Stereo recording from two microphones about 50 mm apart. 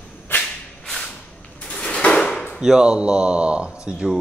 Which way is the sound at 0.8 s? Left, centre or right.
Centre.